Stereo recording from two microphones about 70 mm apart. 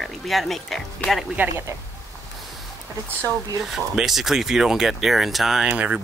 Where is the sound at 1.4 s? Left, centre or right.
Right.